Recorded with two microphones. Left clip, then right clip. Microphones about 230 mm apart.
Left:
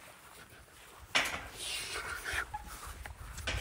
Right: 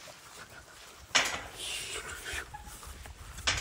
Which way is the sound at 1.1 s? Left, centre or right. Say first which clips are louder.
Right 3 dB; right.